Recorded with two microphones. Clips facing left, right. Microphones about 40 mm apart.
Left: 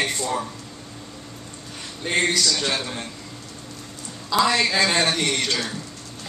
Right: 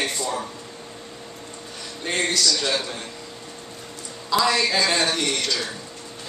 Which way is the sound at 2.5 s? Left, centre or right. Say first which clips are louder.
Right 1 dB; left.